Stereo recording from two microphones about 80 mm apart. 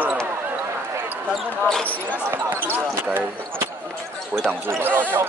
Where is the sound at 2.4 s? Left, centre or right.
Right.